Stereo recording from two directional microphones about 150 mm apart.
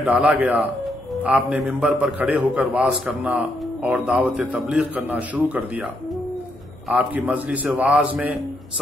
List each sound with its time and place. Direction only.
0.0 s a man's voice: 10° right (ahead or behind)
6.9 s a man's voice: 10° right (ahead or behind)